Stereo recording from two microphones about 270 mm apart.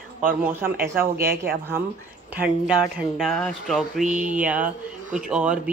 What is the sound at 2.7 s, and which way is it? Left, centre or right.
Speech, centre.